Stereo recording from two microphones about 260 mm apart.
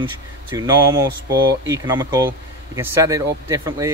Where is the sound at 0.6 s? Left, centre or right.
Centre.